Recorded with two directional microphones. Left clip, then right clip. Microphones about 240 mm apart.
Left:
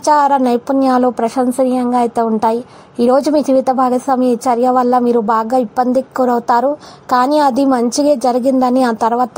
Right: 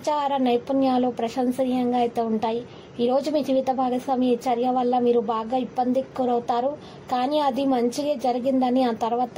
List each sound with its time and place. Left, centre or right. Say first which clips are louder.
0.0 s a woman's voice: left 12 dB; left